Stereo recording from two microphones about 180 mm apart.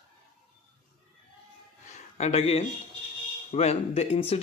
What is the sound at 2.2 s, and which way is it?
Speech, 35° left (ahead or behind).